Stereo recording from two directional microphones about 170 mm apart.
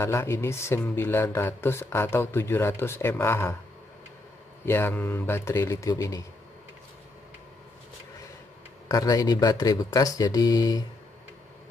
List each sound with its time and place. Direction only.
0.0 s speech: 15° left (ahead or behind)
4.6 s speech: 15° left (ahead or behind)
8.8 s speech: 20° left (ahead or behind)